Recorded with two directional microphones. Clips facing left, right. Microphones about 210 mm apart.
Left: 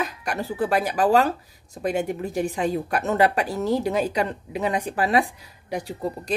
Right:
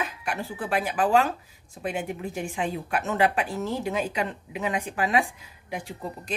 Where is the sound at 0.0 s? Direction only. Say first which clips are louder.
Left 3 dB; 40° left (ahead or behind).